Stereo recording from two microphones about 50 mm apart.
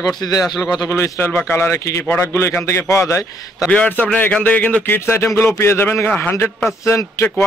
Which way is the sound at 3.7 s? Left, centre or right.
Left.